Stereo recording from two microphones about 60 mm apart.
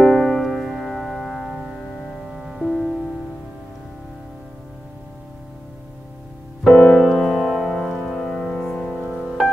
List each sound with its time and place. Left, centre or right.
0.0 s music: centre
0.4 s music: centre
6.6 s music: centre
7.0 s music: centre
9.0 s music: centre